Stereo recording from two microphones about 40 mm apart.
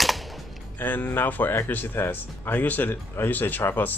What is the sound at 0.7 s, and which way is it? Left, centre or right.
Speech, left.